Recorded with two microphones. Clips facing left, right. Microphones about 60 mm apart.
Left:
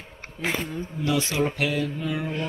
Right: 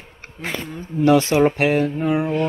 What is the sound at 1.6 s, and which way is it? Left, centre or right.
Speech, right.